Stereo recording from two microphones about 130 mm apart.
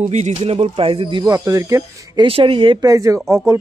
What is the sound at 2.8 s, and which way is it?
Speech, 25° right (ahead or behind).